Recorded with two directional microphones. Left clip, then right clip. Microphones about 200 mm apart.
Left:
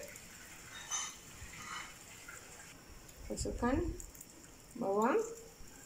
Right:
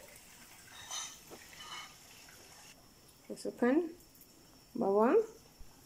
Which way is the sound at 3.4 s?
60° right (ahead or behind).